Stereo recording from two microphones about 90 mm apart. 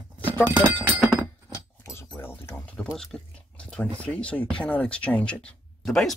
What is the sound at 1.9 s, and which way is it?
Keys jangling, 30° left (ahead or behind).